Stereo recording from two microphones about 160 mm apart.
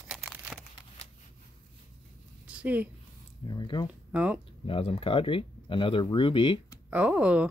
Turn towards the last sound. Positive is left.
turn(degrees=-10)  # may be behind; listen again after turning